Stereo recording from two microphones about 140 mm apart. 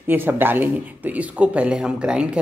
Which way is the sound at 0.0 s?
15° right (ahead or behind).